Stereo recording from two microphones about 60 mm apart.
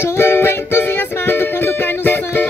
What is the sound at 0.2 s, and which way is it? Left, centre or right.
Music, left.